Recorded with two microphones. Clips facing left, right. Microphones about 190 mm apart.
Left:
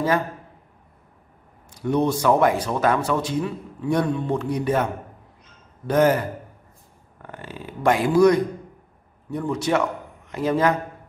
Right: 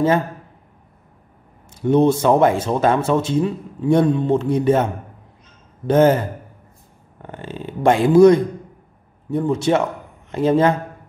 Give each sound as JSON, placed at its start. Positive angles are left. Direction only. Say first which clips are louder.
{"t": 1.7, "sound": "speech", "louder": "right 6 dB", "side_deg": -25}